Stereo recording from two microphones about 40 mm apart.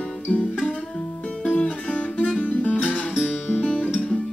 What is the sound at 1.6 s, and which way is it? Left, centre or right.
Guitar, left.